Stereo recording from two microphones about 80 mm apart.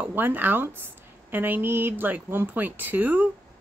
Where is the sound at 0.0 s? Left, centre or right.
Right.